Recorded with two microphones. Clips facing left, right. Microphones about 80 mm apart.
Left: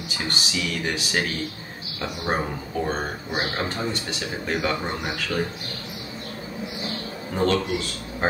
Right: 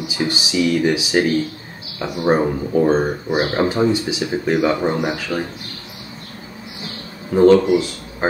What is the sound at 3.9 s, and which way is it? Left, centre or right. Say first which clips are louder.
Speech: right 10 dB; centre.